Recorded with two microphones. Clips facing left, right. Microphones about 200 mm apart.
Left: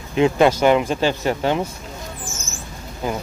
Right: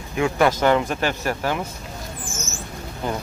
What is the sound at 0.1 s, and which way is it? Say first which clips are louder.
Speech: left 4 dB; 20° left (ahead or behind).